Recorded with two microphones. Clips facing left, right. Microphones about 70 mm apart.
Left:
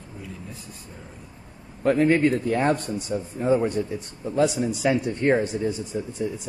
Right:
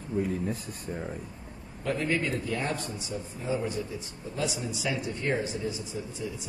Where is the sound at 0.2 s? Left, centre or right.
Right.